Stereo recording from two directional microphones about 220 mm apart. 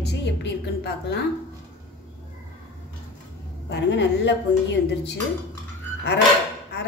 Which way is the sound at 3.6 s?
50° left (ahead or behind).